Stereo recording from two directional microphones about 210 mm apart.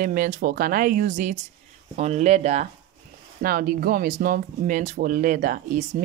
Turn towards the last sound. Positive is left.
turn(degrees=-40)  # may be behind; listen again after turning